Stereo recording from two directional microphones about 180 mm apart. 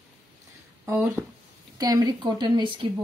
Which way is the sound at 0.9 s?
10° right (ahead or behind).